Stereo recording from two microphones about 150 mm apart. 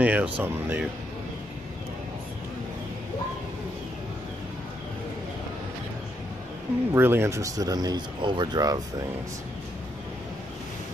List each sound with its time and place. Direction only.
0.0 s speech: 10° right (ahead or behind)
6.9 s speech: 15° right (ahead or behind)